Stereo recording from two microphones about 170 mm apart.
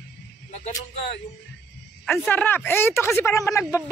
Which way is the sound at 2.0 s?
10° left (ahead or behind).